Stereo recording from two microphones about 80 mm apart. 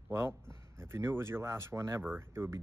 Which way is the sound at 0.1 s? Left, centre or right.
Right.